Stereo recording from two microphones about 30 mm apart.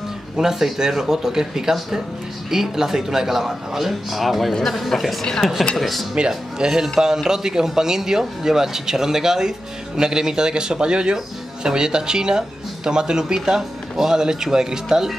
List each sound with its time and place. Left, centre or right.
0.4 s a woman's voice: centre
5.2 s stir: centre
5.8 s a woman's voice: centre
6.1 s speech: right